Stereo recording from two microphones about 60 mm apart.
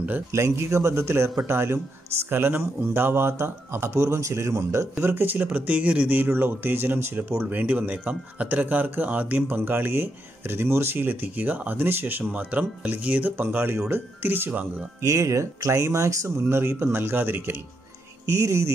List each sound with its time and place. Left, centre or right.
0.3 s speech: right
5.0 s speech: right
14.2 s speech: right
15.0 s speech: right
16.3 s speech: right
18.2 s speech: right